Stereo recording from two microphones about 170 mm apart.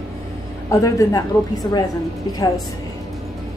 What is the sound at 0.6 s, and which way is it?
Speech, 20° left (ahead or behind).